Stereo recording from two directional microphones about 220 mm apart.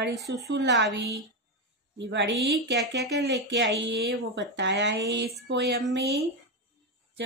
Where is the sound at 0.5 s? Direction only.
50° right (ahead or behind).